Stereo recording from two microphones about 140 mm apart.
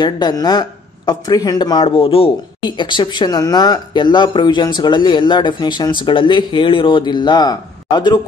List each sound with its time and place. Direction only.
0.0 s speech: 30° left (ahead or behind)